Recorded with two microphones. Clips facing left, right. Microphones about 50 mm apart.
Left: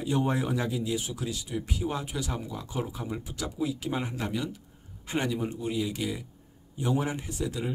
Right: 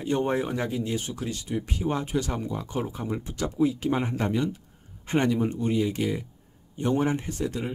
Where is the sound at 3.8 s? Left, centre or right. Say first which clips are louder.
Right 5 dB; centre.